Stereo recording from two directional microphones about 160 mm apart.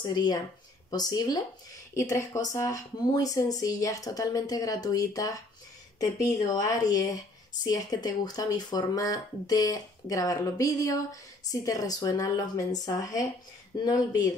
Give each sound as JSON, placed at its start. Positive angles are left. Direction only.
{"t": 0.0, "sound": "speech", "side_deg": 25}